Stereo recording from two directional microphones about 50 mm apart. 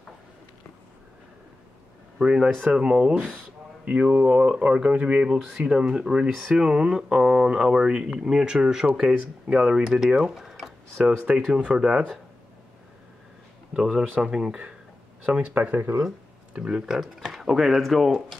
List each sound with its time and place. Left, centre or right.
2.1 s speech: centre
13.7 s speech: centre; by 15.5 s right
15.5 s speech: right
16.5 s speech: centre